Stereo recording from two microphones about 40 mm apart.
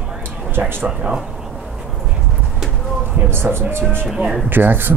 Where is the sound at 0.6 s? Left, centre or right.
Right.